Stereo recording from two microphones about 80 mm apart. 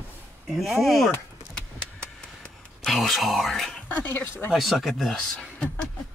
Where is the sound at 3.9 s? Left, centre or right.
Left.